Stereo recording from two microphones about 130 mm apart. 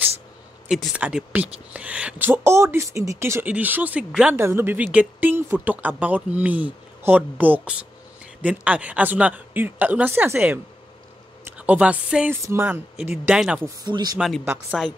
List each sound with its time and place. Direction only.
0.9 s speech: 10° right (ahead or behind)
13.2 s speech: 10° right (ahead or behind)
13.8 s speech: 30° right (ahead or behind)
14.1 s speech: centre (ahead or behind)